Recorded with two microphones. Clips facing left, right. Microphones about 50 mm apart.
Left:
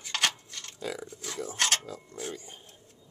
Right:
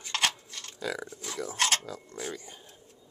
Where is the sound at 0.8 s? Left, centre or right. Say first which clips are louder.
Right 2 dB; right.